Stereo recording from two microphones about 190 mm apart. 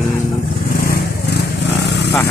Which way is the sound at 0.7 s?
55° left (ahead or behind).